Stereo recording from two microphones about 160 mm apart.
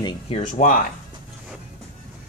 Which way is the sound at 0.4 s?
55° left (ahead or behind).